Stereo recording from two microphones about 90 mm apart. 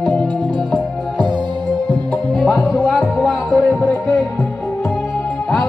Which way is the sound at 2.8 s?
10° right (ahead or behind).